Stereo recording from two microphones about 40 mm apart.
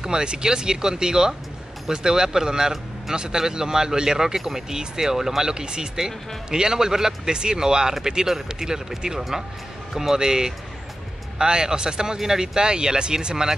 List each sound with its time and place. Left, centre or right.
0.0 s speech: right